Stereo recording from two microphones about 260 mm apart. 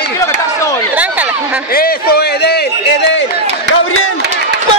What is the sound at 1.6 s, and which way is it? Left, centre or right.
A man's voice, left.